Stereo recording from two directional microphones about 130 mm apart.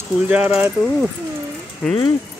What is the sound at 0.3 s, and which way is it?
Speech, 15° right (ahead or behind).